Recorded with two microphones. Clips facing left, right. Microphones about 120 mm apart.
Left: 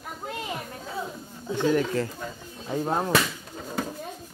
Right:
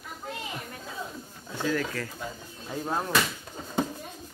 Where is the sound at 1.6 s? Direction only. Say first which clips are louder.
Left 6 dB; 20° left (ahead or behind).